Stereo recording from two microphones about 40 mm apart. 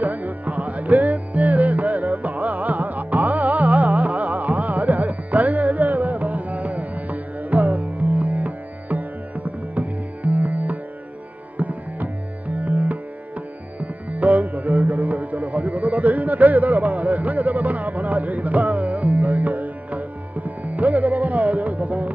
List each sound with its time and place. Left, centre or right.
0.0 s music: right